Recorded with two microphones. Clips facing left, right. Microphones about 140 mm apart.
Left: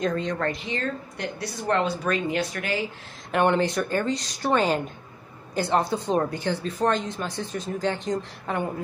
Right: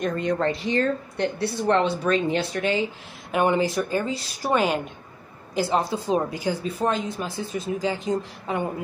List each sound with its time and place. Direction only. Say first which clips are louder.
0.0 s a woman's voice: right 1 dB; 10° right (ahead or behind)
0.4 s speech: right 5 dB; 30° right (ahead or behind)
3.3 s a woman's voice: even; 5° right (ahead or behind)